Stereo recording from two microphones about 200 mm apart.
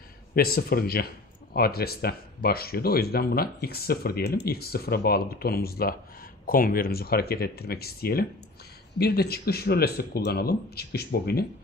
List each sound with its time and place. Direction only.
0.3 s speech: 50° left (ahead or behind)